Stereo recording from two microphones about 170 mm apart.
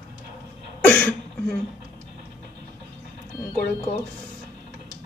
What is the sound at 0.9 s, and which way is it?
Throat clearing, 10° left (ahead or behind).